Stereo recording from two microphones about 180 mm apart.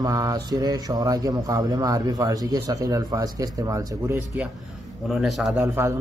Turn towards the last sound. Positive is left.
turn(degrees=-15)  # may be behind; listen again after turning